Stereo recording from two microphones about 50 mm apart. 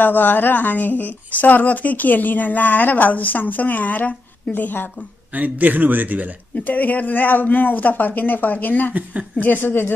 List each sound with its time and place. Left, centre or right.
0.0 s speech: left
5.3 s a man's voice: right
6.6 s a woman's voice: left